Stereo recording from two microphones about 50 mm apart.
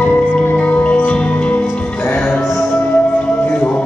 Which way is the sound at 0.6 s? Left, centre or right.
Left.